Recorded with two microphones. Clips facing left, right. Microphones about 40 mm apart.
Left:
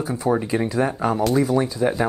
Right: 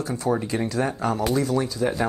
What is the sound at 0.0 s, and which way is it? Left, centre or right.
Speech, centre.